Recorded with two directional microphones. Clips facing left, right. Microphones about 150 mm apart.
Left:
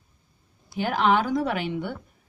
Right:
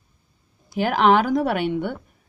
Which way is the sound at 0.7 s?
75° right (ahead or behind).